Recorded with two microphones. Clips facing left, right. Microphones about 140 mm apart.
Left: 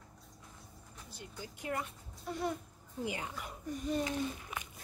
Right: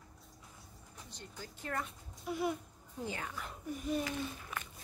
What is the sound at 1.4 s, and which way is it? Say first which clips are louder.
Speech: left 2 dB; 15° left (ahead or behind).